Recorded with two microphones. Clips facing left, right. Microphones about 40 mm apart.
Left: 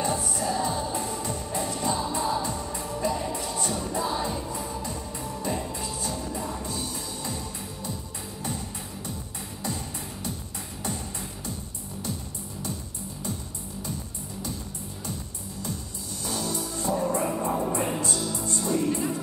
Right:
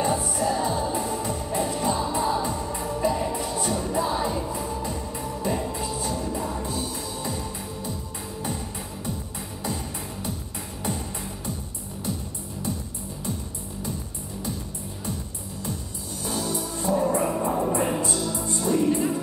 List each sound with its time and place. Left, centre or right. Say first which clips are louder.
0.0 s music: right 4 dB; centre
16.3 s music: right 2 dB; centre